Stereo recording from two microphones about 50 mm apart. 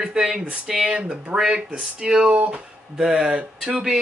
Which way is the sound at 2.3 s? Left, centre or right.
Right.